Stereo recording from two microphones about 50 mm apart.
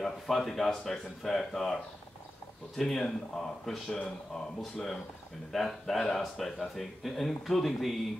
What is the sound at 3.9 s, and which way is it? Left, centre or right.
Speech, left.